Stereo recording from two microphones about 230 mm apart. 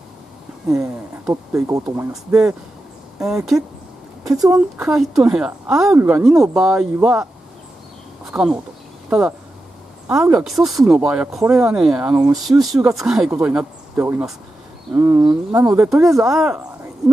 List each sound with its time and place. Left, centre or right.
0.7 s speech: centre
8.3 s speech: centre
10.0 s speech: centre
15.9 s speech: centre